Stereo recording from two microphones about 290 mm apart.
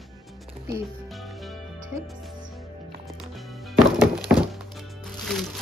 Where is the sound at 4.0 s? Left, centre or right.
Centre.